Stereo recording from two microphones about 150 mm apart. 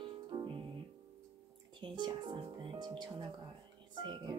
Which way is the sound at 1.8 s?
30° right (ahead or behind).